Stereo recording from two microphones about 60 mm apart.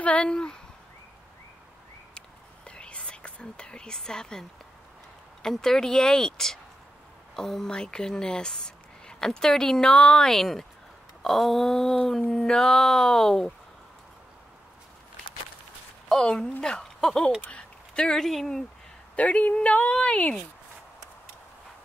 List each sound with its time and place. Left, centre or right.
0.0 s speech: centre
2.1 s whispering: centre
5.4 s speech: centre
11.2 s a sound: centre
12.1 s speech: centre
16.1 s speech: centre
19.1 s speech: left